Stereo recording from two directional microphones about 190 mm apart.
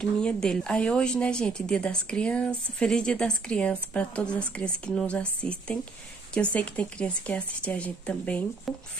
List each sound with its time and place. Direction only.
0.0 s a woman's voice: 5° left (ahead or behind)